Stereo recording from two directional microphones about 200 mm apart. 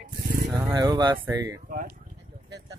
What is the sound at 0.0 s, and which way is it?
Vehicle, 45° right (ahead or behind).